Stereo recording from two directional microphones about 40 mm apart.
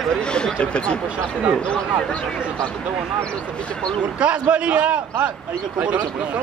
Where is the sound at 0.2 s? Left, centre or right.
Left.